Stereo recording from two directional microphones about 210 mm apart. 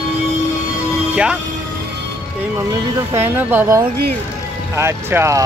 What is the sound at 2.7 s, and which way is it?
Speech, 10° right (ahead or behind).